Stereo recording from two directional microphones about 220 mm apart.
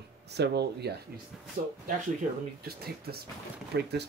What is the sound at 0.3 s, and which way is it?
Speech, 50° right (ahead or behind).